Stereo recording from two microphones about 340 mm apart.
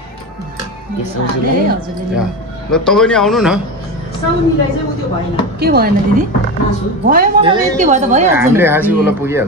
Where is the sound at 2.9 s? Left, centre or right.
Centre.